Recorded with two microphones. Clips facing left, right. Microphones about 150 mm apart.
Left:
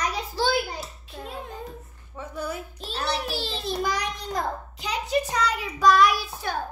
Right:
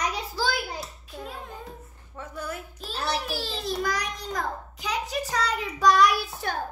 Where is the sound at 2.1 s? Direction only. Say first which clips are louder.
Left 2 dB; 10° left (ahead or behind).